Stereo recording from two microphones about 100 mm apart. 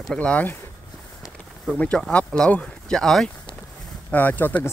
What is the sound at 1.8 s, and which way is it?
Speech, 10° left (ahead or behind).